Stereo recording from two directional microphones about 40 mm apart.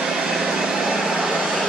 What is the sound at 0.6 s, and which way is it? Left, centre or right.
Vehicle, centre.